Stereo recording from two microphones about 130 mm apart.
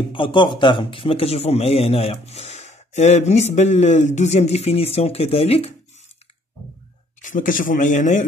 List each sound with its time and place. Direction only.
0.1 s a man's voice: 40° left (ahead or behind)
7.2 s speech: 85° left